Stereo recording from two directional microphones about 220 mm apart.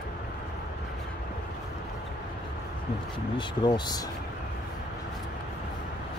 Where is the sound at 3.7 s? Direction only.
20° left (ahead or behind).